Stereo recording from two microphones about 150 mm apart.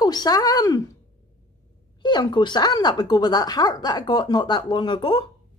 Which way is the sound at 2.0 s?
30° left (ahead or behind).